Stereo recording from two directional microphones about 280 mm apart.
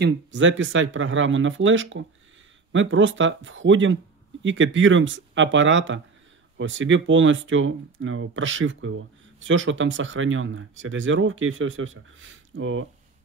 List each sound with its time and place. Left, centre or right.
0.0 s speech: right